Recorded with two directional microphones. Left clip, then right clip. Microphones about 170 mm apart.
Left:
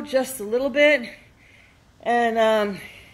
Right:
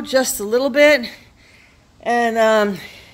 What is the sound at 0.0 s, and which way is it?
A woman's voice, 20° right (ahead or behind).